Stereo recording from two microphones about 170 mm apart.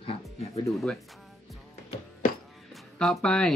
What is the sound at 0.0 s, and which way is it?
Music, 35° left (ahead or behind).